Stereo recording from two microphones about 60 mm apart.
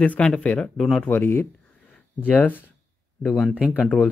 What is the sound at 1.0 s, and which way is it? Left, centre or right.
Speech, left.